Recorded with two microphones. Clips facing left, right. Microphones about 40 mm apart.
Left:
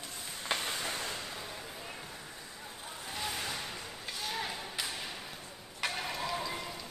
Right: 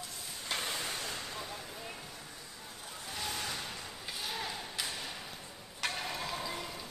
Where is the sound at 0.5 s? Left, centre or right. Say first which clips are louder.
Left 3 dB; left.